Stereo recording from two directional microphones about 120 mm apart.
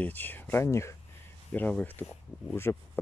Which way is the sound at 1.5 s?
10° left (ahead or behind).